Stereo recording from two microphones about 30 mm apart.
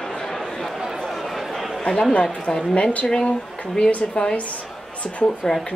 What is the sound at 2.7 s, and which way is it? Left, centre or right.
Speech, left.